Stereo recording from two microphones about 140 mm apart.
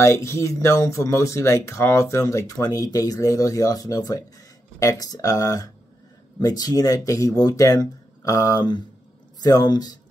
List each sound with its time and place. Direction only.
0.0 s speech: 20° left (ahead or behind)